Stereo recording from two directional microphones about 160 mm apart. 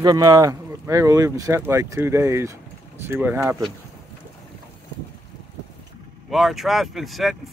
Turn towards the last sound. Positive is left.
turn(degrees=0)  # may be behind; listen again after turning